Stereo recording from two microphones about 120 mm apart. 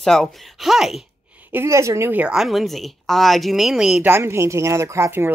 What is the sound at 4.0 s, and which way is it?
Speech, 20° right (ahead or behind).